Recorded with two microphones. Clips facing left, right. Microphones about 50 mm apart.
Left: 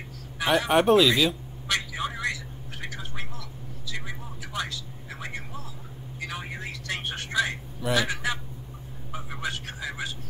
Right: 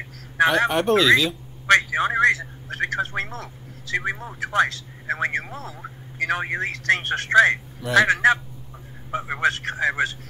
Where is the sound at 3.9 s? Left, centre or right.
Right.